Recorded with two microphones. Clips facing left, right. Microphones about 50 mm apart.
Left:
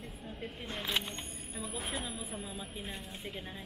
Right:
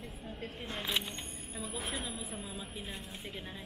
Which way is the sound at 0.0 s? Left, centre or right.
Centre.